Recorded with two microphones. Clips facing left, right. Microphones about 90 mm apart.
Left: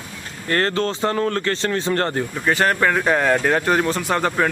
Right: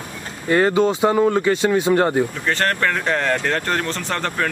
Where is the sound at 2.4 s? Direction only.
10° left (ahead or behind).